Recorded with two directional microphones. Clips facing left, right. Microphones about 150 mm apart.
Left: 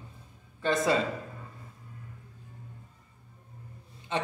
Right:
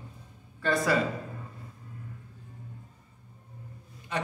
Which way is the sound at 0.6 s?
25° left (ahead or behind).